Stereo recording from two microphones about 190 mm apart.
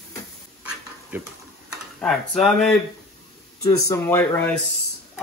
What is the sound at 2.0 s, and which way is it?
Speech, centre (ahead or behind).